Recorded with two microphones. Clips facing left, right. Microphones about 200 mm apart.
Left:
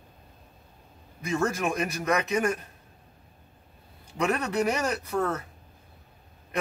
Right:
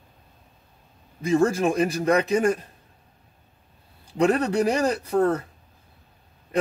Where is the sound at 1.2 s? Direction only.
30° right (ahead or behind).